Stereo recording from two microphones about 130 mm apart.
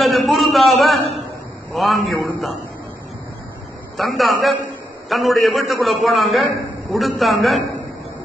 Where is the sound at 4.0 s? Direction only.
Centre (ahead or behind).